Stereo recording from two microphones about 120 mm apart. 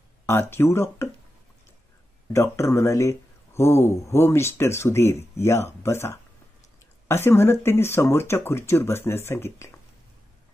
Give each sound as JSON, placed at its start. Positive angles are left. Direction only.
{"t": 0.3, "sound": "speech", "side_deg": 20}
{"t": 2.3, "sound": "speech", "side_deg": 25}